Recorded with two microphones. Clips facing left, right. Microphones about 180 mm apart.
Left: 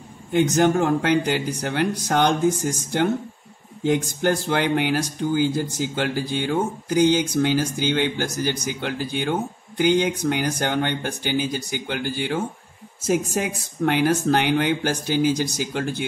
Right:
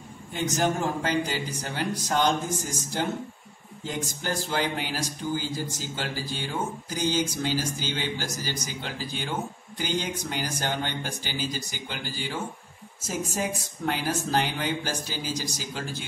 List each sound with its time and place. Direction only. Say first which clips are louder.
0.3 s speech: left 8 dB; 65° left (ahead or behind)